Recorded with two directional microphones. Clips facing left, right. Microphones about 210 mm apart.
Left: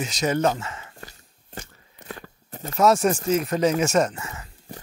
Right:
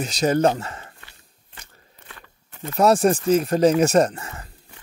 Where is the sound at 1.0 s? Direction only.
40° left (ahead or behind).